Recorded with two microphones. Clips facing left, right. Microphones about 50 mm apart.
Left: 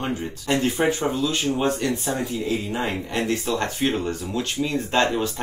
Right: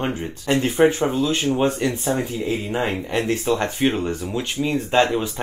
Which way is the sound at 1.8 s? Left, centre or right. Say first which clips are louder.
Right 3 dB; centre.